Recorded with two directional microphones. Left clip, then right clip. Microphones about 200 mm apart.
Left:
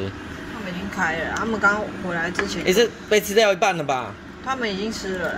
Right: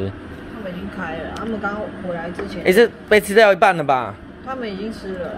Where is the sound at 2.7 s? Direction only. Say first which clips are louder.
Right 6 dB; 20° right (ahead or behind).